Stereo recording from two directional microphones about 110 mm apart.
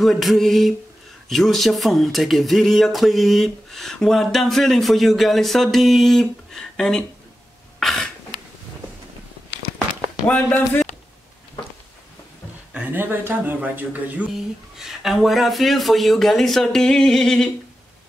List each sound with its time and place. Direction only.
0.0 s speech: centre (ahead or behind)
7.8 s cough: centre (ahead or behind)
10.2 s speech: 15° left (ahead or behind)
12.7 s speech: 15° right (ahead or behind)
14.8 s speech: centre (ahead or behind)